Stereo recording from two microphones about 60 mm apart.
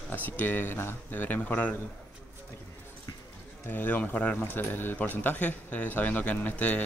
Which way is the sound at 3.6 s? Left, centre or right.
Left.